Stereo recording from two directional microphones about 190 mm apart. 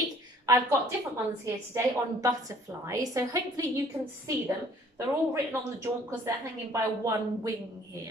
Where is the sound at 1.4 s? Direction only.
15° right (ahead or behind).